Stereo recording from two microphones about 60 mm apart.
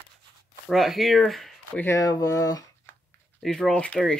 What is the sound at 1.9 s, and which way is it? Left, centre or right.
Speech, left.